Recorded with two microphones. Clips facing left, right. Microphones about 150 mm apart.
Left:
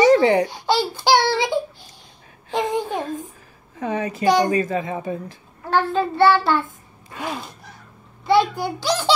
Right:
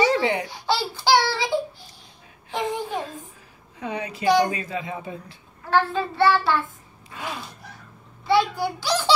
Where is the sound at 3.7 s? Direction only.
45° left (ahead or behind).